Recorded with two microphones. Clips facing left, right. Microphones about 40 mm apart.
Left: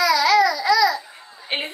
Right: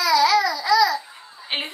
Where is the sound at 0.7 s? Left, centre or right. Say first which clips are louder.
Right 2 dB; centre.